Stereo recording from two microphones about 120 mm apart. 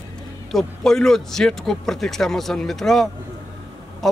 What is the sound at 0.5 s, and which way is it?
Speech, 5° left (ahead or behind).